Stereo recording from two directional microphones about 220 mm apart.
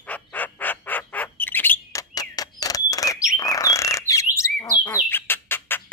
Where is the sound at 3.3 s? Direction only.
15° left (ahead or behind).